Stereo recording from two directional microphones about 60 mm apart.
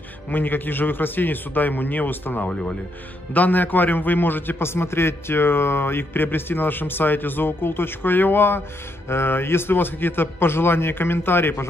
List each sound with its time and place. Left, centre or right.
0.3 s a man's voice: left